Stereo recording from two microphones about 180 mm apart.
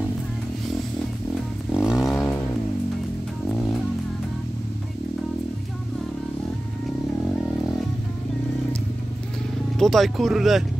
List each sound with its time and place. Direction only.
1.7 s vehicle: 5° right (ahead or behind)
9.8 s speech: centre (ahead or behind)